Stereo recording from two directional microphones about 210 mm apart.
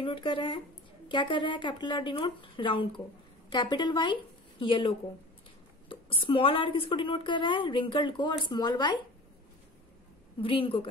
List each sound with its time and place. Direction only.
0.0 s a woman's voice: 25° left (ahead or behind)
10.4 s a woman's voice: 25° left (ahead or behind)